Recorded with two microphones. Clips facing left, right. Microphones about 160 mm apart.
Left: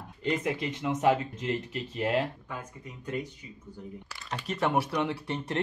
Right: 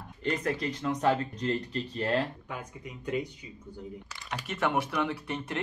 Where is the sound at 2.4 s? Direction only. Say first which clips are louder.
Right 1 dB; 15° right (ahead or behind).